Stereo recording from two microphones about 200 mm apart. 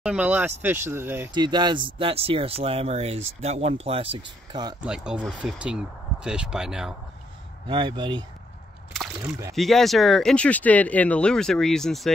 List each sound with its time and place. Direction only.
0.0 s speech: 5° right (ahead or behind)
1.3 s speech: 20° right (ahead or behind)
4.8 s speech: 5° right (ahead or behind)
7.6 s speech: 25° right (ahead or behind)
8.9 s speech: centre (ahead or behind)